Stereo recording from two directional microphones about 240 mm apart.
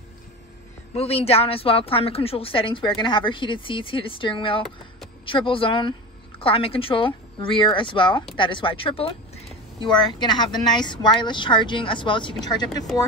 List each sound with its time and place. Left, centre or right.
0.9 s a woman's voice: left